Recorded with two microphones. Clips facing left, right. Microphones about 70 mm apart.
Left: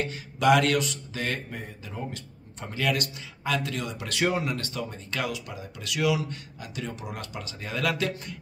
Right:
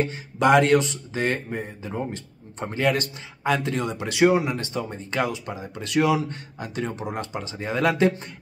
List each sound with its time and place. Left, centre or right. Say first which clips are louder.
0.0 s speech: right 3 dB; right
4.1 s speech: right 7 dB; centre